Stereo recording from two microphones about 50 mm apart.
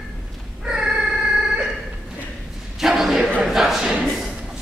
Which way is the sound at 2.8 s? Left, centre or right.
Centre.